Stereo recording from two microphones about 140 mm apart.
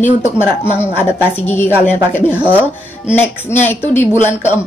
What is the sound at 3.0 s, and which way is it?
A woman's voice, 15° left (ahead or behind).